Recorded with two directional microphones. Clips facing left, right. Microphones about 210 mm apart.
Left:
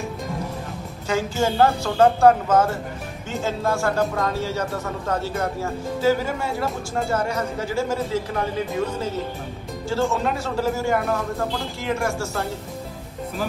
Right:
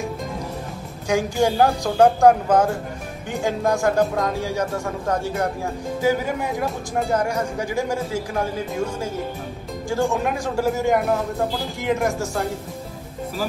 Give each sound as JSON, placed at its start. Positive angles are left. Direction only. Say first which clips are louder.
{"t": 1.0, "sound": "speech", "louder": "right 3 dB", "side_deg": -15}